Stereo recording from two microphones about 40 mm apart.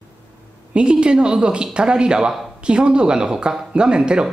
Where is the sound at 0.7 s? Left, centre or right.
Right.